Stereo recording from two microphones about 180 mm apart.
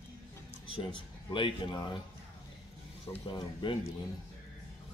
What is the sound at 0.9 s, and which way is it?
Speech, 30° left (ahead or behind).